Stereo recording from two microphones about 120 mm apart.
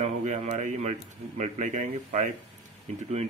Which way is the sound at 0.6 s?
85° right.